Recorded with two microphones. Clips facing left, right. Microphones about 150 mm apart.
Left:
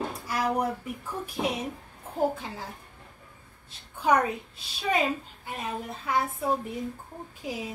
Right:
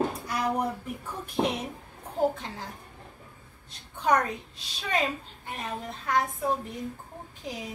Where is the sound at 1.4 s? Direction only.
45° right (ahead or behind).